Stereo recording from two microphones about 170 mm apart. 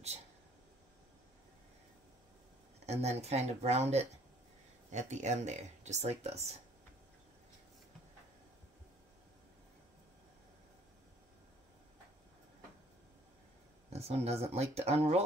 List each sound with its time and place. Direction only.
2.9 s speech: 40° right (ahead or behind)
13.9 s speech: 40° right (ahead or behind)